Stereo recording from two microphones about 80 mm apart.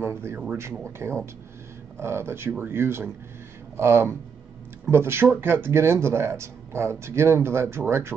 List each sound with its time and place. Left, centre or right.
0.0 s speech: right